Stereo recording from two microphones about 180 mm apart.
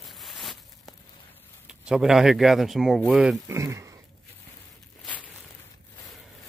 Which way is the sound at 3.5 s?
15° right (ahead or behind).